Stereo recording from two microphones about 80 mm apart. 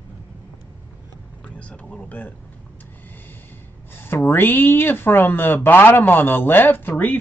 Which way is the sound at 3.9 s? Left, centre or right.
Left.